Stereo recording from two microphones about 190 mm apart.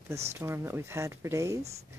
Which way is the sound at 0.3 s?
15° right (ahead or behind).